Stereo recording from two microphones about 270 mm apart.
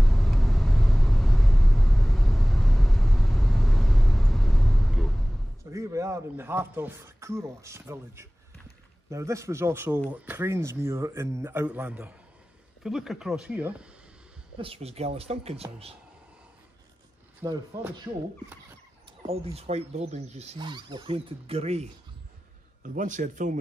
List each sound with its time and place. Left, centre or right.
0.0 s vehicle: centre
5.7 s a man's voice: centre
14.6 s speech: right
17.4 s a man's voice: centre
19.2 s speech: right
22.9 s speech: right